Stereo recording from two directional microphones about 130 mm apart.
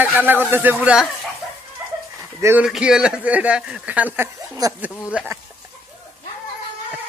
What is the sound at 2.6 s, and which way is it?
Speech, 5° right (ahead or behind).